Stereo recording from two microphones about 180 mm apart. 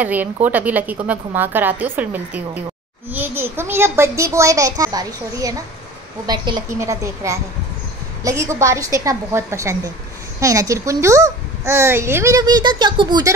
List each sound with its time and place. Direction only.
0.0 s a child's voice: 10° right (ahead or behind)